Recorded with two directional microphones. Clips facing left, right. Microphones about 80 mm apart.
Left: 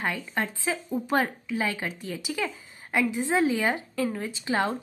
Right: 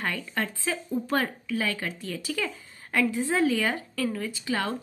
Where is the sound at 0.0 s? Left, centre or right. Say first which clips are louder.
Left 1 dB; centre.